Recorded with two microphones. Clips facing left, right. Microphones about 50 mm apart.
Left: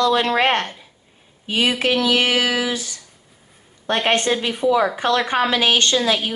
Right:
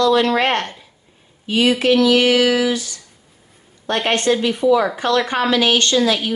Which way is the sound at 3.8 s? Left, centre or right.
Centre.